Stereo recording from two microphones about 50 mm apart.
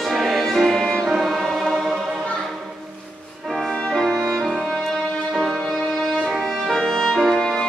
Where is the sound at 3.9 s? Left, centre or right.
Centre.